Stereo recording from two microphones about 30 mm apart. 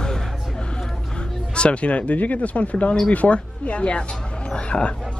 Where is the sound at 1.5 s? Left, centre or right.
Left.